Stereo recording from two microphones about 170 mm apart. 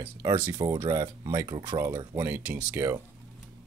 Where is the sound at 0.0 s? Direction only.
20° right (ahead or behind).